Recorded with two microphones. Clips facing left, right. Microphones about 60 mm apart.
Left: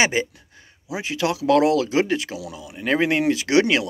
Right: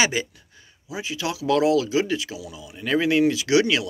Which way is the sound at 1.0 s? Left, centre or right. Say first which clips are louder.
Left 5 dB; left.